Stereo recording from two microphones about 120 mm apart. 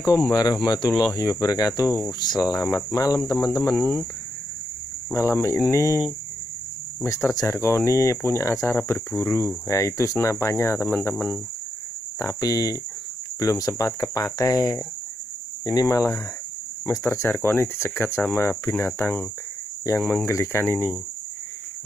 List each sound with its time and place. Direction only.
0.3 s speech: 30° left (ahead or behind)
2.1 s speech: 35° left (ahead or behind); by 4.0 s 15° left (ahead or behind)
5.1 s speech: 20° left (ahead or behind)
12.2 s speech: 30° left (ahead or behind)
20.2 s speech: 20° left (ahead or behind)